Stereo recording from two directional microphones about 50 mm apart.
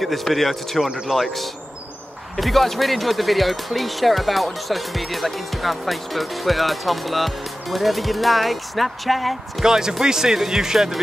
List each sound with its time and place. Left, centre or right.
0.0 s speech: centre
0.8 s speech: centre
1.1 s speech: centre
9.7 s speech: centre